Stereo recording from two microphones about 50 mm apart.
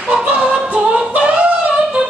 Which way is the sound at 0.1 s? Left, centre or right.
Right.